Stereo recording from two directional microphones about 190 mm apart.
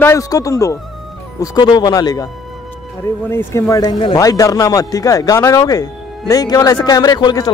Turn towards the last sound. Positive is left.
turn(degrees=20)  # may be behind; listen again after turning